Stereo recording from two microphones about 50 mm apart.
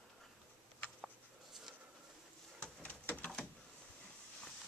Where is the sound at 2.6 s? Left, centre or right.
Left.